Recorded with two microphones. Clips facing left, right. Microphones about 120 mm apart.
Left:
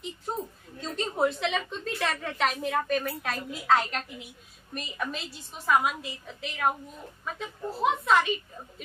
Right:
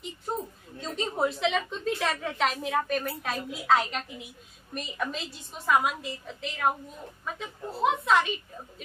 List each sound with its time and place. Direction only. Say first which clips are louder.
0.8 s a woman's voice: left 1 dB; centre (ahead or behind)